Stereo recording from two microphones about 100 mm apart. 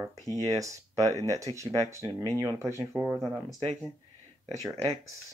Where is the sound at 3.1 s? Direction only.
Centre (ahead or behind).